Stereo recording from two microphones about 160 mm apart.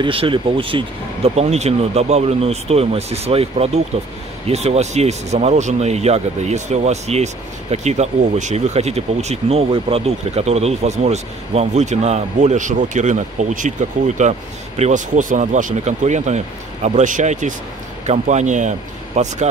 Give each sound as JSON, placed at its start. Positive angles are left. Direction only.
{"t": 0.0, "sound": "speech", "side_deg": -35}